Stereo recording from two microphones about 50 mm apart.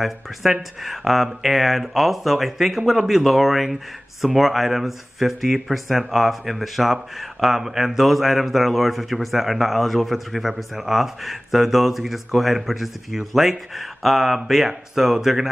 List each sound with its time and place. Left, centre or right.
0.0 s speech: centre